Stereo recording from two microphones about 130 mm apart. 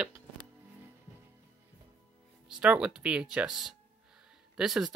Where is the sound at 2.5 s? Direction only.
5° right (ahead or behind).